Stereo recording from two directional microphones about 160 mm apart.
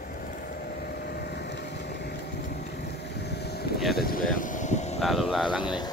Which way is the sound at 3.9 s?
65° left (ahead or behind).